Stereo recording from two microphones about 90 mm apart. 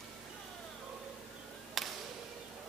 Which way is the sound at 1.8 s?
Centre (ahead or behind).